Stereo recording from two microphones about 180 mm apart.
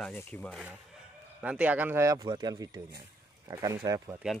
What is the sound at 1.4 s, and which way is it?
Speech, 5° right (ahead or behind).